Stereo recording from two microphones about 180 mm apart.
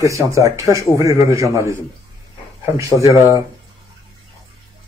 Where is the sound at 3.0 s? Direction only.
15° right (ahead or behind).